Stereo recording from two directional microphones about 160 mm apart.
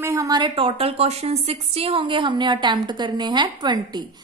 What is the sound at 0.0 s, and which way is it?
Speech, 20° right (ahead or behind).